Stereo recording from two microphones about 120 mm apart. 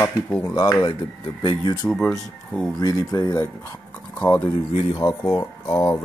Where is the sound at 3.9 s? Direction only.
10° left (ahead or behind).